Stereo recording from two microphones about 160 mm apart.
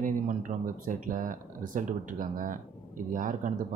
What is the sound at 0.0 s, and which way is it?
Speech, 55° right (ahead or behind).